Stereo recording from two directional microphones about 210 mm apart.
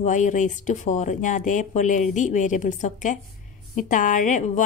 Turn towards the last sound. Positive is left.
turn(degrees=35)  # may be behind; listen again after turning